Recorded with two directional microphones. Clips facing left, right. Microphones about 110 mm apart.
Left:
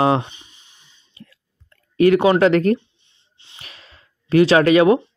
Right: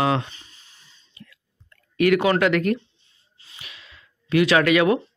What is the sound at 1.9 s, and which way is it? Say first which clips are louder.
Speech: left 5 dB; 30° left (ahead or behind).